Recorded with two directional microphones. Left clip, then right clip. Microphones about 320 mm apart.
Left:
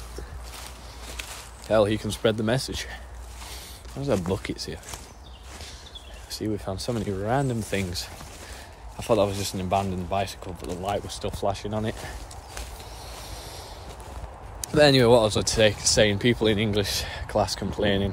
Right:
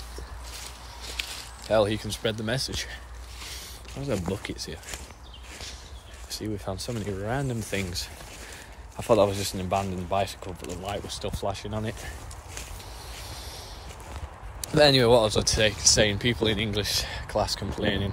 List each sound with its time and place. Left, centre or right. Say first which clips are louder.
1.7 s speech: left 2 dB; centre
4.0 s speech: left 4 dB; centre
6.3 s speech: left 3 dB; centre
13.3 s a sound: left 1 dB; centre
14.6 s speech: left 1 dB; centre